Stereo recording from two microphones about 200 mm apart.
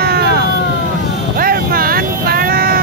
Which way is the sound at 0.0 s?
50° right (ahead or behind).